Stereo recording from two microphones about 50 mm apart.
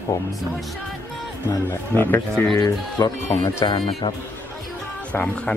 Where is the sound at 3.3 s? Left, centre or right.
Left.